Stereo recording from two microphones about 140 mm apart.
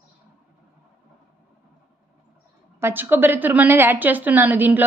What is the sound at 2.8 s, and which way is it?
A woman's voice, 15° right (ahead or behind).